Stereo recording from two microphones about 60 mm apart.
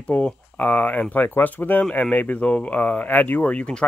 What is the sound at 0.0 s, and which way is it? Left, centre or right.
Speech, left.